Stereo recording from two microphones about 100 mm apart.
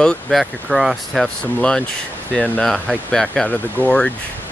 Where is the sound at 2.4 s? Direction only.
10° left (ahead or behind).